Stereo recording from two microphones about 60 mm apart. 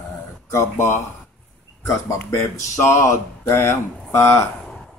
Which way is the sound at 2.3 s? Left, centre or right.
Left.